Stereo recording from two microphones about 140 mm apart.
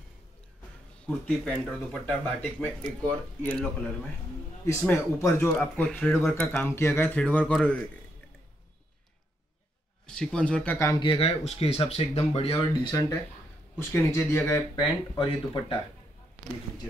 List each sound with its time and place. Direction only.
1.0 s speech: 10° left (ahead or behind)
6.7 s speech: 20° left (ahead or behind)
10.0 s speech: 5° left (ahead or behind)
11.0 s speech: 40° left (ahead or behind)
13.7 s speech: 15° left (ahead or behind)
15.1 s speech: 35° left (ahead or behind)